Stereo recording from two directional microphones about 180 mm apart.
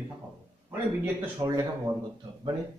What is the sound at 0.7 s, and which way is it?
Speech, 15° right (ahead or behind).